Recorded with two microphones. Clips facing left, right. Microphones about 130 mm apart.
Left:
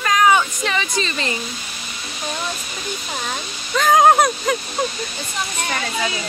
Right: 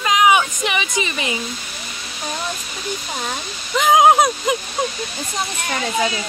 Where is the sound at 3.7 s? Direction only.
15° right (ahead or behind).